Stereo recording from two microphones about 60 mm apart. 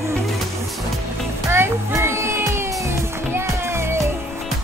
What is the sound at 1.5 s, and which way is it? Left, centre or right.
Music, right.